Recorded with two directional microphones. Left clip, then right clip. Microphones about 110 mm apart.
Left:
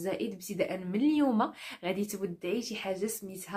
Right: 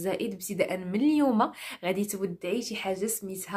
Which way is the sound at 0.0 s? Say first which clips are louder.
Right 3 dB; 35° right (ahead or behind).